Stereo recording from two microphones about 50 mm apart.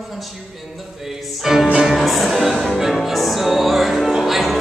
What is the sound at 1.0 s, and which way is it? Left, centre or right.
Music, centre.